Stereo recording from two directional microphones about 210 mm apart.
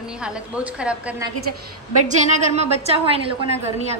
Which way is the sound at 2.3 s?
30° right (ahead or behind).